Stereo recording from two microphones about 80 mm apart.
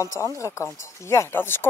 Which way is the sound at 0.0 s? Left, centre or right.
Left.